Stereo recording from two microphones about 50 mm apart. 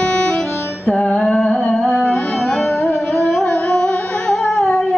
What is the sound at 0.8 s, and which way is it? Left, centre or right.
Music, centre.